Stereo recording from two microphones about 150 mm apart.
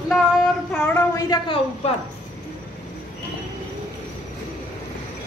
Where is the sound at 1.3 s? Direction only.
25° left (ahead or behind).